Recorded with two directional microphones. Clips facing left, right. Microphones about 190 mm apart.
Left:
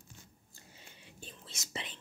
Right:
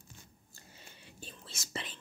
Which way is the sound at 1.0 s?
20° left (ahead or behind).